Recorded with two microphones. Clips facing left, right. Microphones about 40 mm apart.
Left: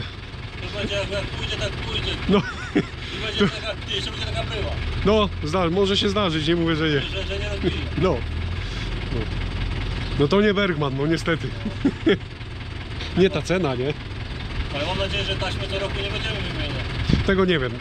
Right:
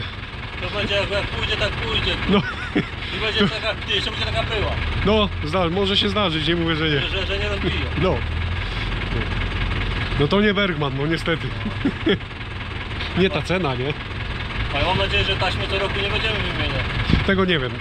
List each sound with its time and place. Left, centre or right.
0.7 s speech: right
2.3 s speech: centre
3.2 s speech: right
5.0 s speech: centre
7.2 s speech: right
10.2 s speech: centre
13.2 s speech: right
17.3 s speech: centre